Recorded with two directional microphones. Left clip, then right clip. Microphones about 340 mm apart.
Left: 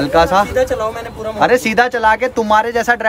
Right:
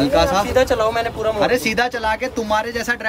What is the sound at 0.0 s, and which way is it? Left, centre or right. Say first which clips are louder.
Speech: left 4 dB; centre.